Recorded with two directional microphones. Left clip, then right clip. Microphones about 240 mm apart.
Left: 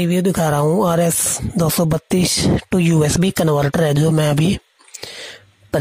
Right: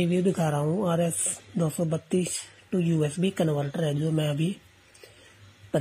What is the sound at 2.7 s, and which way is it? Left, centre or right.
Speech, left.